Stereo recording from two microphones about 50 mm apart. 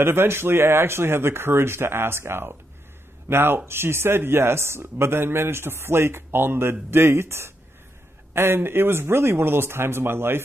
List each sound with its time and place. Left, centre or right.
0.0 s speech: right